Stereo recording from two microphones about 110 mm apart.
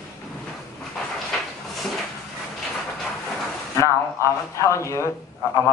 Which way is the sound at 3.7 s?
25° left (ahead or behind).